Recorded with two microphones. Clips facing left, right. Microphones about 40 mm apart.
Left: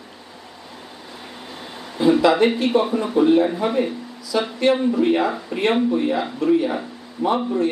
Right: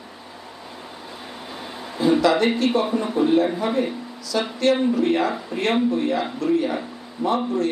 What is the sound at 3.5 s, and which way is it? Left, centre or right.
Speech, centre.